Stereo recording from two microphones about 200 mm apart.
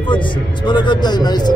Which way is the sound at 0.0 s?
25° left (ahead or behind).